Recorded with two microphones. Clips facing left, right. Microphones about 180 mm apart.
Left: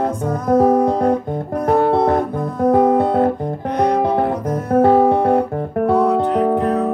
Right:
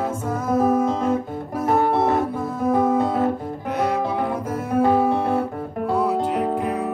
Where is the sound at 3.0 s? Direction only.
60° left (ahead or behind).